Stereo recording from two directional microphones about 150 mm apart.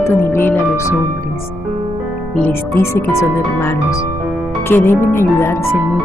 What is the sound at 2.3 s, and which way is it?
Speech, 10° left (ahead or behind).